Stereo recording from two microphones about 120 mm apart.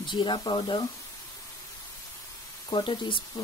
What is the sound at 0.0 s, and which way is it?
Speech, 40° left (ahead or behind).